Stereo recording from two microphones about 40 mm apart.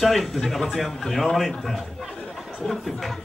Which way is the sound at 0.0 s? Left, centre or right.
Centre.